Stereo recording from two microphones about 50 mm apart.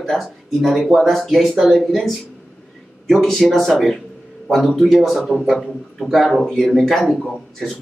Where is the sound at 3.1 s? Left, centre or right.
Centre.